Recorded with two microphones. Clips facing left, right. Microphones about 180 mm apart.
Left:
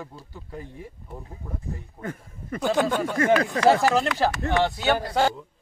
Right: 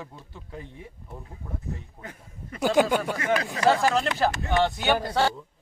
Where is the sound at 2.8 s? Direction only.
10° right (ahead or behind).